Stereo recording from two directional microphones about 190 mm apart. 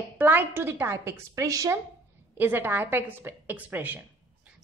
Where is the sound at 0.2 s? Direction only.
10° right (ahead or behind).